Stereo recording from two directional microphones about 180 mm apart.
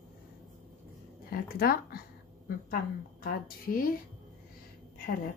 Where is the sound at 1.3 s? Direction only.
55° left (ahead or behind).